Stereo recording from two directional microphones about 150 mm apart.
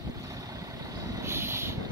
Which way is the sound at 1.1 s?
15° right (ahead or behind).